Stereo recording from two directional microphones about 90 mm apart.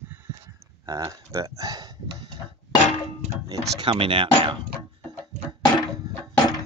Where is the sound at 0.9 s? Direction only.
40° right (ahead or behind).